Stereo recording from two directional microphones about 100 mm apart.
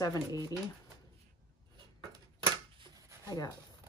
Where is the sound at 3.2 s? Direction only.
40° left (ahead or behind).